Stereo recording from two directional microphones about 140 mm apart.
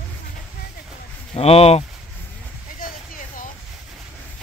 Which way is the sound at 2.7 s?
80° left.